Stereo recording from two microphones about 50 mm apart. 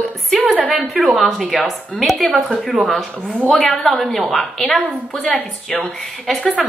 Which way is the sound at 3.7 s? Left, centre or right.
Centre.